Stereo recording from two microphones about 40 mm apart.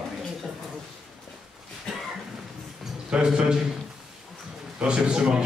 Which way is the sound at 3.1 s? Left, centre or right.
Right.